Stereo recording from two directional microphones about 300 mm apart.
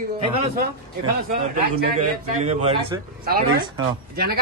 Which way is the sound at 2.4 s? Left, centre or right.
Centre.